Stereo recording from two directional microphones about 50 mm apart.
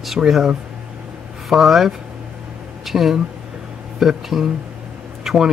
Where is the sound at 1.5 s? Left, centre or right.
Centre.